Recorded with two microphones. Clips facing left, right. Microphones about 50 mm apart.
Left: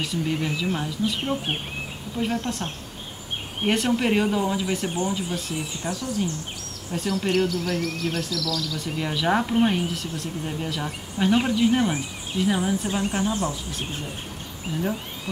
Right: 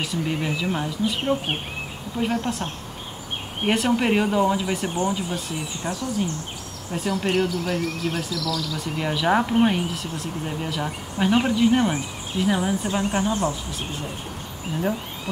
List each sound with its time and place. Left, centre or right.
0.0 s speech: centre
5.8 s speech: right
6.9 s speech: centre